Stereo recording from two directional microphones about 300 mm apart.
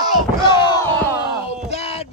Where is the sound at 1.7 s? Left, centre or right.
Left.